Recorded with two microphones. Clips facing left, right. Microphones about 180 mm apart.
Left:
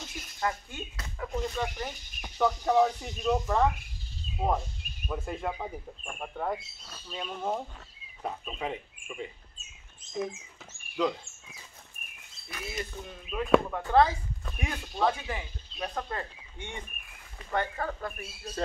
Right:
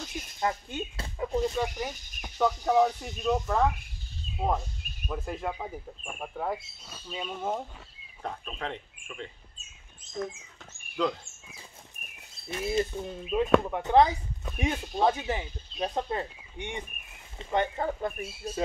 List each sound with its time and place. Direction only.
0.4 s speech: 20° right (ahead or behind)
1.5 s speech: 5° right (ahead or behind)
8.2 s speech: 10° left (ahead or behind)
12.4 s speech: 25° right (ahead or behind)